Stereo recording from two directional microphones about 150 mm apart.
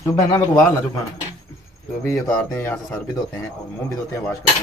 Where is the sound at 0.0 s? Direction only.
20° left (ahead or behind).